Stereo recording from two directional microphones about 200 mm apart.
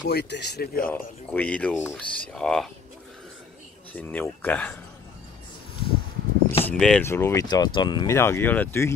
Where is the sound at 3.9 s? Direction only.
10° left (ahead or behind).